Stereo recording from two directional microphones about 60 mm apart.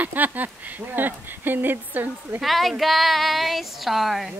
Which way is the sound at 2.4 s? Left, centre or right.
Centre.